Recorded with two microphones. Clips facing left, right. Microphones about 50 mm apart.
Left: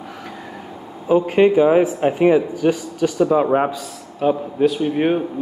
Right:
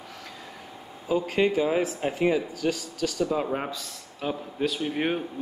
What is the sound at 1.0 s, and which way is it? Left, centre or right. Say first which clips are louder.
Speech: left 10 dB; left.